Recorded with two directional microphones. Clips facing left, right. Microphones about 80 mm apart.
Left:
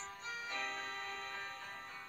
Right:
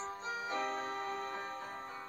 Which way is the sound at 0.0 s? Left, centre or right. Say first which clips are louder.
Right 6 dB; right.